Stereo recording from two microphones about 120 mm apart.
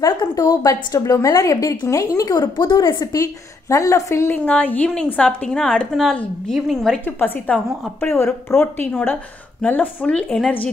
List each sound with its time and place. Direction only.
0.0 s a woman's voice: 35° left (ahead or behind); by 7.0 s 5° left (ahead or behind)
7.1 s a woman's voice: 15° left (ahead or behind)
8.5 s a woman's voice: 15° left (ahead or behind)